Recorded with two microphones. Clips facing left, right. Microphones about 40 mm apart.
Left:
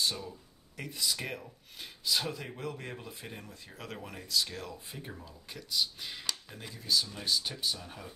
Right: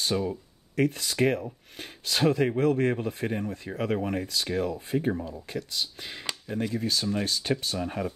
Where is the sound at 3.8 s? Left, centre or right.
Right.